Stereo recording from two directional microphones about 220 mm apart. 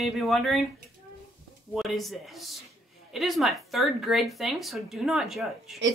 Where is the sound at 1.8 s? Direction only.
Centre (ahead or behind).